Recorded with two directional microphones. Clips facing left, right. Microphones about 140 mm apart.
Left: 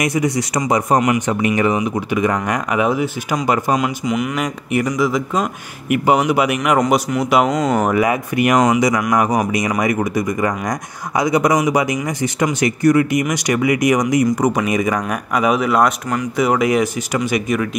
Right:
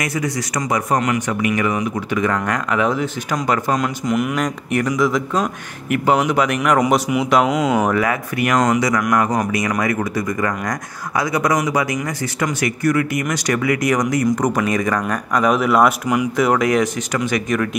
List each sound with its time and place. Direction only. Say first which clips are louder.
0.0 s a man's voice: left 4 dB; 20° left (ahead or behind)
1.3 s a man's voice: left 3 dB; 30° left (ahead or behind)
1.8 s speech: left 2 dB; 15° left (ahead or behind)
3.7 s speech: left 1 dB; 5° left (ahead or behind)
7.4 s speech: even; 5° right (ahead or behind)
7.8 s a man's voice: left 2 dB; 15° left (ahead or behind)